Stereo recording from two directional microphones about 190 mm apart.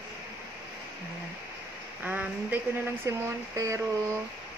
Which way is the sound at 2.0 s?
10° right (ahead or behind).